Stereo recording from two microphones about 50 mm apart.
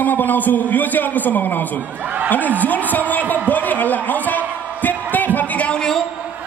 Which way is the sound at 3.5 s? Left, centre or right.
Left.